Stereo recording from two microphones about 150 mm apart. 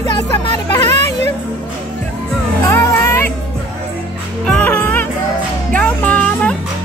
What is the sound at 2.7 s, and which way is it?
Music, 15° left (ahead or behind).